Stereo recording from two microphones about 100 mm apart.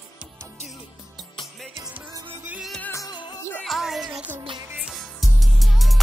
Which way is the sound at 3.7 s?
Centre (ahead or behind).